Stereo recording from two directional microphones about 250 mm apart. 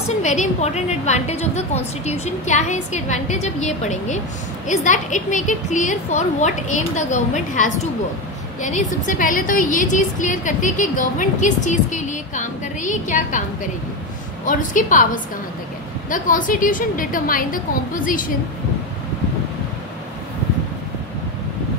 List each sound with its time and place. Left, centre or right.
0.2 s a woman's voice: left
14.4 s a woman's voice: left
16.1 s a woman's voice: left